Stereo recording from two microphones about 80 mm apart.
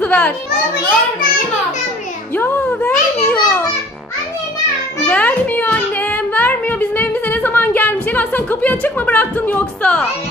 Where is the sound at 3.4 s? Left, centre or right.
Left.